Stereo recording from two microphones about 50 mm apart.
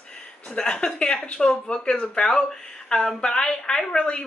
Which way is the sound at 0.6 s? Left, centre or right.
Centre.